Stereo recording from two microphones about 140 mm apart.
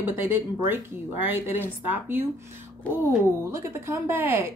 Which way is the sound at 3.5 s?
20° right (ahead or behind).